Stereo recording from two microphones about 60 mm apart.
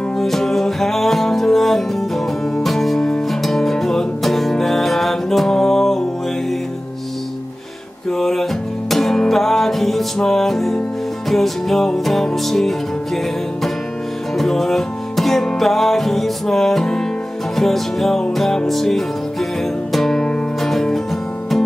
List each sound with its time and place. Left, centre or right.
0.2 s music: centre
8.1 s music: centre
14.4 s music: centre